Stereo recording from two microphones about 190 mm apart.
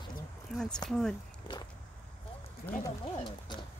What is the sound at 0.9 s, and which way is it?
Speech, centre (ahead or behind).